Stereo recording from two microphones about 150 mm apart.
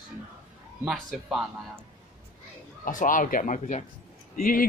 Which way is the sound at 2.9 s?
65° left (ahead or behind).